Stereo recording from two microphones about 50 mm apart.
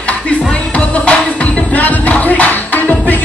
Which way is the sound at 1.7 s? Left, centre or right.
Left.